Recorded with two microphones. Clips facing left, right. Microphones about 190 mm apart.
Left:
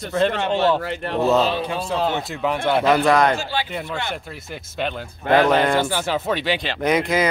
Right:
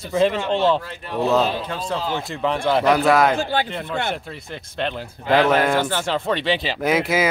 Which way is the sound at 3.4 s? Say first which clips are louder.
Right 4 dB; 55° right (ahead or behind).